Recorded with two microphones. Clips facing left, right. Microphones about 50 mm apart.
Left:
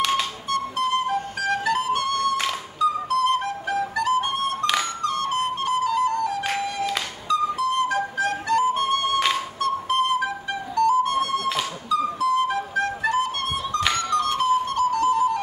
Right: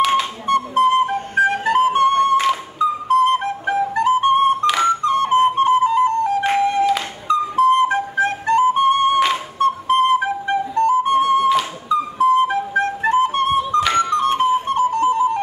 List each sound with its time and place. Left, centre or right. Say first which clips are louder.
0.2 s music: right 6 dB; right
2.8 s flute: right 5 dB; right
11.9 s music: right 6 dB; right